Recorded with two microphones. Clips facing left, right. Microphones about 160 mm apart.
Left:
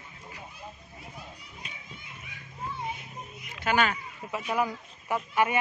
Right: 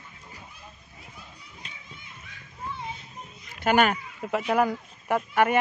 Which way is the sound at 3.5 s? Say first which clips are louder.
Right 5 dB; 50° right (ahead or behind).